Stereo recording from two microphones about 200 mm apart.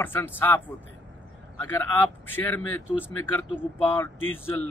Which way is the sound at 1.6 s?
10° left (ahead or behind).